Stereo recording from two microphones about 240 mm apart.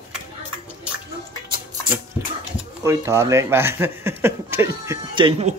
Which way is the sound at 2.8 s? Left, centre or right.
Centre.